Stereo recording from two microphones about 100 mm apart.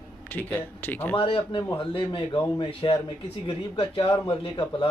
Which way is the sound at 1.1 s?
60° left (ahead or behind).